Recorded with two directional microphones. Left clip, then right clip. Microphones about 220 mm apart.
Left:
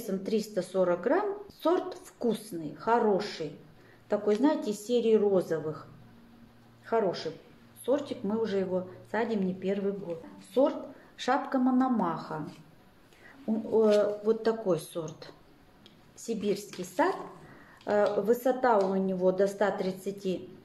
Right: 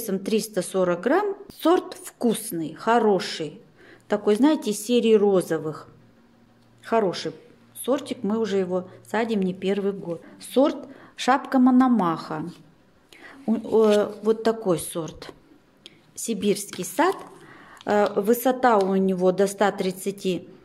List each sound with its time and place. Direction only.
0.0 s a woman's voice: 40° right (ahead or behind)
13.7 s a woman's voice: 35° right (ahead or behind)